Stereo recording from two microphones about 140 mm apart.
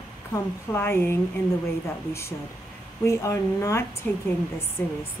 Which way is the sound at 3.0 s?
20° left (ahead or behind).